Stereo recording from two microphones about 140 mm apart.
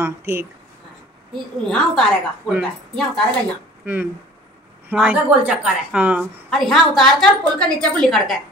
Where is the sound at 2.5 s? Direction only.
5° left (ahead or behind).